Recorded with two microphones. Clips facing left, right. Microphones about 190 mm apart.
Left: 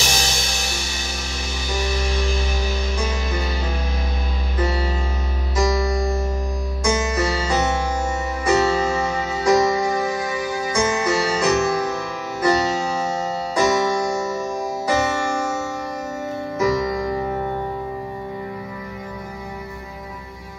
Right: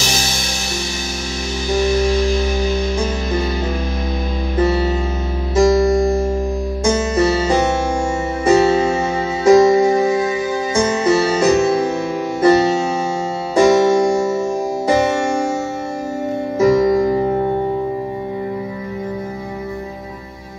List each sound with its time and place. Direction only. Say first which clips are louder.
4.6 s music: right 7 dB; 25° right (ahead or behind)
16.5 s music: right 8 dB; 25° right (ahead or behind)